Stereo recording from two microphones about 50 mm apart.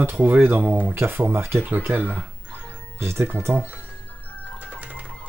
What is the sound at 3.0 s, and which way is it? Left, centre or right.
Speech, right.